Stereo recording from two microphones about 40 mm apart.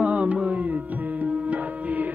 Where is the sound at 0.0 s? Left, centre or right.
Right.